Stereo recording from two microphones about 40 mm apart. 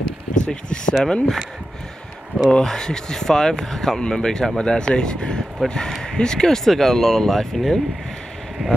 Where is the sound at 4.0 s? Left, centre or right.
Centre.